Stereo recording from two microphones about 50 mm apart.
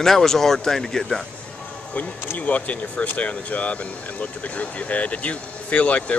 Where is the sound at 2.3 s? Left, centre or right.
Left.